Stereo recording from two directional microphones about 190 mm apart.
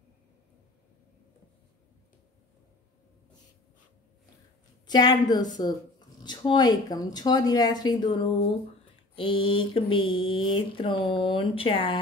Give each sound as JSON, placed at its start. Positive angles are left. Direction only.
{"t": 4.8, "sound": "speech", "side_deg": 20}